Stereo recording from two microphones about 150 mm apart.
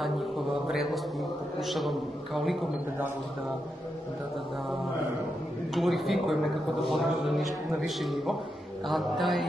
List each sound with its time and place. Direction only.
0.7 s mantra: centre (ahead or behind)
1.6 s a man's voice: centre (ahead or behind)
5.8 s a man's voice: centre (ahead or behind)